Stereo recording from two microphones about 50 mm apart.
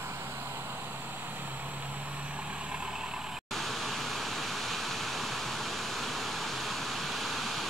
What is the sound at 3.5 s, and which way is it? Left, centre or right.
Waterfall, centre.